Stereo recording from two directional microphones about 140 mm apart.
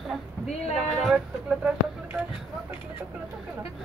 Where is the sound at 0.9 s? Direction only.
Centre (ahead or behind).